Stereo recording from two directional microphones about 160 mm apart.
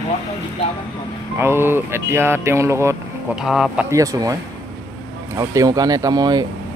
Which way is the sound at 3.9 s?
20° right (ahead or behind).